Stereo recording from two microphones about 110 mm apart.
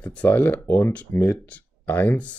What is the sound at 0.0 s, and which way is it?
Speech, 15° left (ahead or behind).